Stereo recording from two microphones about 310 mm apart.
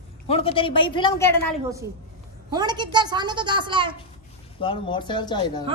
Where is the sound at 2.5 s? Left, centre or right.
Centre.